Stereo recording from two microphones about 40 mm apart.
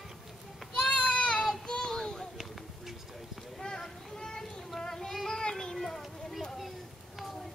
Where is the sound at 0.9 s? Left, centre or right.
Left.